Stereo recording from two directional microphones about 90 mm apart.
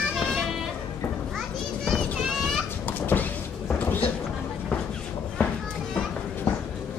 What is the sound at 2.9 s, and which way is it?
Vehicle, 20° left (ahead or behind).